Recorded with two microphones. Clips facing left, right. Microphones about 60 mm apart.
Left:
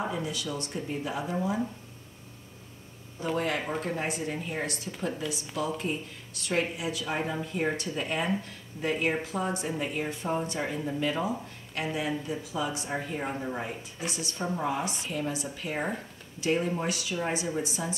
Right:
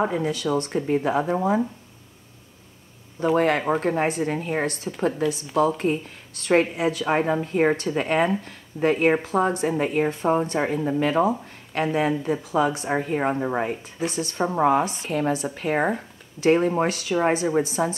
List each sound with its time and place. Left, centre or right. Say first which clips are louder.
0.0 s speech: right 9 dB; right
3.3 s speech: right 9 dB; right